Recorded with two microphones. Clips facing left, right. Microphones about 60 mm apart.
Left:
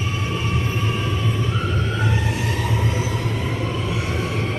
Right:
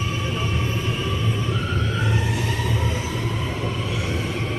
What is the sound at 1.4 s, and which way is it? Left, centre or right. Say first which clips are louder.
Emergency vehicle: left 2 dB; centre.